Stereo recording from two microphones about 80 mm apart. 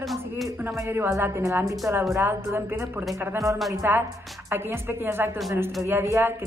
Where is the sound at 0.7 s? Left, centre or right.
Right.